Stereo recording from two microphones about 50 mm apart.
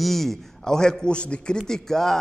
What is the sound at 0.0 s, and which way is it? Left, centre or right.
A man's voice, centre.